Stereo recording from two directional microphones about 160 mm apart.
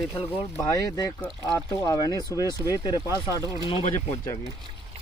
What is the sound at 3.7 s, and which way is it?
Speech, 35° left (ahead or behind).